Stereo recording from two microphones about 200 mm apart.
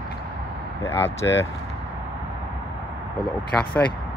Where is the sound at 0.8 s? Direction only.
10° left (ahead or behind).